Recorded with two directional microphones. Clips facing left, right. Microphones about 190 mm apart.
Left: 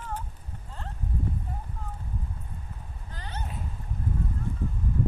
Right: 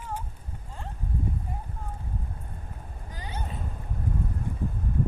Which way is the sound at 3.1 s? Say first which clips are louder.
Right 1 dB; 10° right (ahead or behind).